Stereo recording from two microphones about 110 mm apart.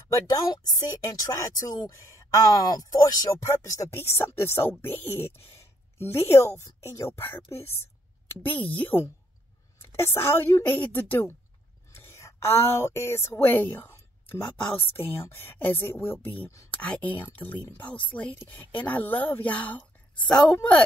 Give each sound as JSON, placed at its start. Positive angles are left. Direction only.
{"t": 0.3, "sound": "a woman's voice", "side_deg": 35}